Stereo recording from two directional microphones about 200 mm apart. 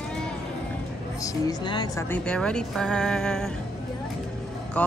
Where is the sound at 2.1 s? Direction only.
5° left (ahead or behind).